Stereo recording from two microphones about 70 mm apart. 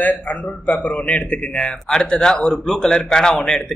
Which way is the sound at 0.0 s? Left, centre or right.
Left.